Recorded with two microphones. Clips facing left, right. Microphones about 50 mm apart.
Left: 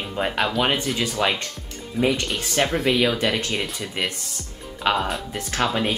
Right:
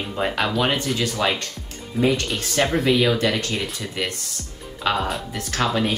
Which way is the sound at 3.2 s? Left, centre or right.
Left.